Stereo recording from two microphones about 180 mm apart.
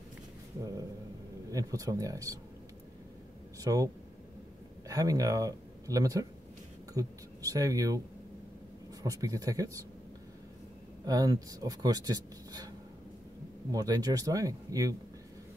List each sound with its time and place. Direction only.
1.5 s speech: 20° right (ahead or behind)
3.5 s speech: 20° right (ahead or behind)
9.0 s speech: 20° right (ahead or behind)
11.1 s speech: 20° right (ahead or behind)